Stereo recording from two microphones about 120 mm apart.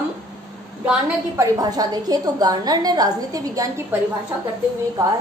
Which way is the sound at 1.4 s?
35° right (ahead or behind).